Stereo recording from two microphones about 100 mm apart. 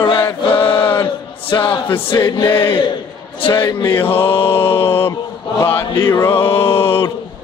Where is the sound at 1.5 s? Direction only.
55° left (ahead or behind).